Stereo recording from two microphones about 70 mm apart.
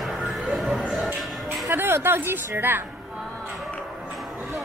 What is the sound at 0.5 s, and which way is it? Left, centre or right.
Music, centre.